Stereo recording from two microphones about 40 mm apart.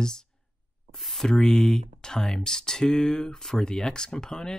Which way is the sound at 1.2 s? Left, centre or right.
Centre.